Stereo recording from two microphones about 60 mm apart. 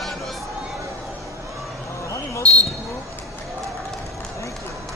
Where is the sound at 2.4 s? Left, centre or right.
Right.